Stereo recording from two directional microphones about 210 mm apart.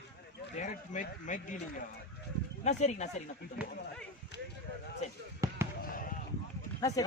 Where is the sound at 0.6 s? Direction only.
35° left (ahead or behind).